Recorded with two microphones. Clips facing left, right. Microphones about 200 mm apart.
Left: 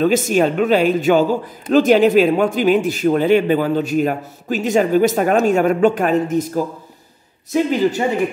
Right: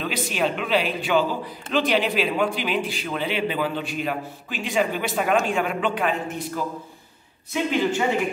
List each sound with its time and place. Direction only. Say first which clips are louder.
0.0 s a man's voice: left 10 dB; 45° left (ahead or behind)